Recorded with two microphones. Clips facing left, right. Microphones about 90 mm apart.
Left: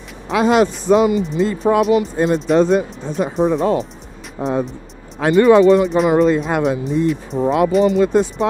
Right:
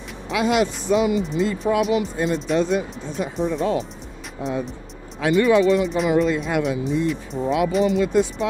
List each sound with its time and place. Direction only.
0.3 s speech: 40° left (ahead or behind)